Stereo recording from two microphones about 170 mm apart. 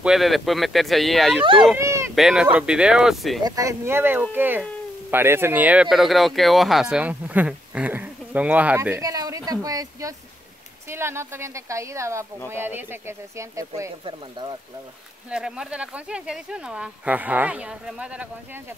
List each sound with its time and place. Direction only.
0.0 s speech: centre (ahead or behind)
1.4 s a child's voice: 30° right (ahead or behind)
1.8 s speech: 15° right (ahead or behind)
2.1 s speech: 5° right (ahead or behind)
3.4 s speech: 20° right (ahead or behind)
15.2 s speech: 5° right (ahead or behind)